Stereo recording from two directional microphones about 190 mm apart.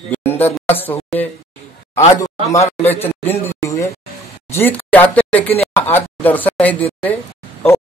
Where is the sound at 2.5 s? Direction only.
15° left (ahead or behind).